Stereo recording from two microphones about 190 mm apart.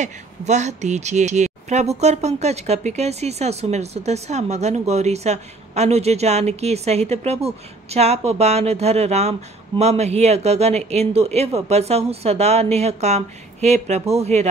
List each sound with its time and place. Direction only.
0.0 s speech: 40° right (ahead or behind)